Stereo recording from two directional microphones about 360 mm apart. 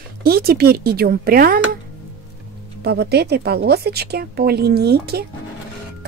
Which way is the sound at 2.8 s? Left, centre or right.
Right.